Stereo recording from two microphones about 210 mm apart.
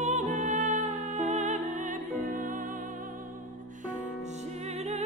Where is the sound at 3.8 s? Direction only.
35° right (ahead or behind).